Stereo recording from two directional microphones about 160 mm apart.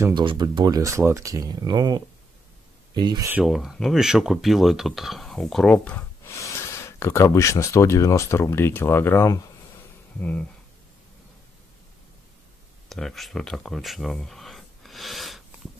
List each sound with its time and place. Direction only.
0.1 s speech: 30° right (ahead or behind)
3.3 s speech: 5° right (ahead or behind); by 9.4 s 15° left (ahead or behind)
12.9 s speech: centre (ahead or behind)